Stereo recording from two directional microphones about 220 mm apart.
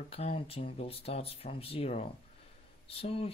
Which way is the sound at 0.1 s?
25° left (ahead or behind).